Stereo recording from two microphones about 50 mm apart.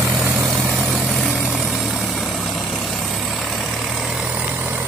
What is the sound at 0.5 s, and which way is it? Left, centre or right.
Vehicle, centre.